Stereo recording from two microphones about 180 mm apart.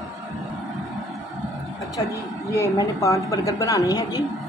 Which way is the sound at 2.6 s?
15° left (ahead or behind).